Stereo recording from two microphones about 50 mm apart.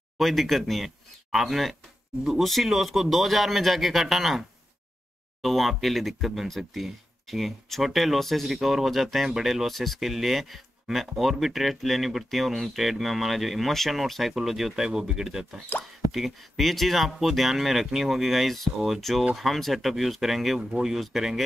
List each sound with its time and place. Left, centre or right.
0.2 s speech: centre